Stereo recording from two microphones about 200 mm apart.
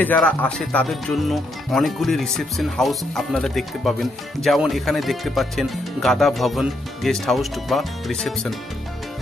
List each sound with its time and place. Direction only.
0.0 s speech: 10° left (ahead or behind)